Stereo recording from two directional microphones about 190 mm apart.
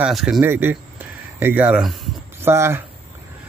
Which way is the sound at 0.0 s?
Centre (ahead or behind).